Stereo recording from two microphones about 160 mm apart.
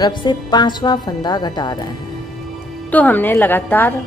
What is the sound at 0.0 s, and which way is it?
Speech, 30° left (ahead or behind).